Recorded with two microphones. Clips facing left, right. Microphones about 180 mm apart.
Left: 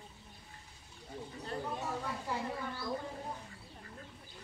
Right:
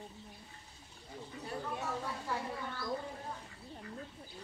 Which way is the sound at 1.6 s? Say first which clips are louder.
Even; 15° left (ahead or behind).